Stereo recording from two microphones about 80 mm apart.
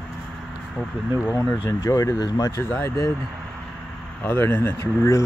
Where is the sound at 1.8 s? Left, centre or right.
Left.